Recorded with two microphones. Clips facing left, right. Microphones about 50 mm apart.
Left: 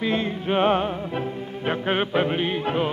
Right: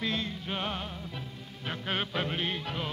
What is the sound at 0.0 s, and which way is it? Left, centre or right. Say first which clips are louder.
Music: left 9 dB; left.